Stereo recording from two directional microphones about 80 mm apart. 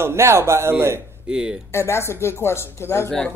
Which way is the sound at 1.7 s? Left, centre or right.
Left.